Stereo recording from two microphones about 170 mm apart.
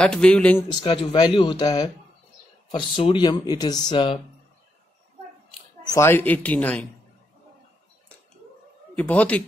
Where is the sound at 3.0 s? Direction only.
30° left (ahead or behind).